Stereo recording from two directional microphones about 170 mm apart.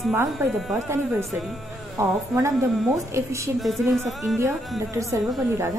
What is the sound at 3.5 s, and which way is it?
Speech, centre (ahead or behind).